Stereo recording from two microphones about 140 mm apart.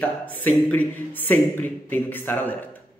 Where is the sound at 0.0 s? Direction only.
10° left (ahead or behind).